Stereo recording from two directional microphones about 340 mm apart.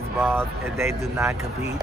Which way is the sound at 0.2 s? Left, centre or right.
Centre.